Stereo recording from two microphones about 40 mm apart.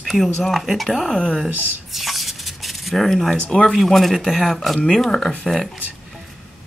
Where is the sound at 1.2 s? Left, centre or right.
Right.